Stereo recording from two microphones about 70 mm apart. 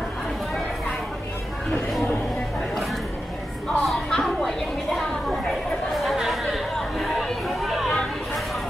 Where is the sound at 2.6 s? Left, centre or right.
Centre.